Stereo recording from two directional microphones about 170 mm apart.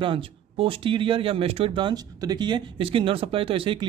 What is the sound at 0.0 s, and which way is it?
Speech, 30° right (ahead or behind).